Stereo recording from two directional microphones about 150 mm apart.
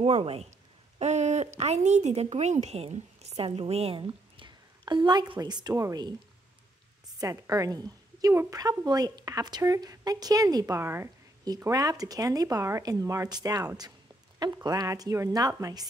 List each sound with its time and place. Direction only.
0.0 s speech: 40° right (ahead or behind); by 6.1 s 25° right (ahead or behind)
7.2 s a woman's voice: 20° right (ahead or behind)